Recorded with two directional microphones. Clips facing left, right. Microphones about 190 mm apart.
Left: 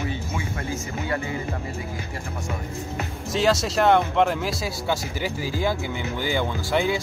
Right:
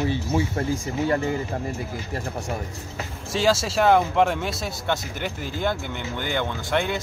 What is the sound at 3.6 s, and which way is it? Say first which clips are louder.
Speech: even; centre (ahead or behind).